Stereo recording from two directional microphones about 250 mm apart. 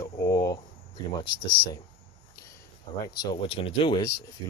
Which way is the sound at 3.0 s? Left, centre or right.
Centre.